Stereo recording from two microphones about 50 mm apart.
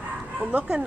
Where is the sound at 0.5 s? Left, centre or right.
Right.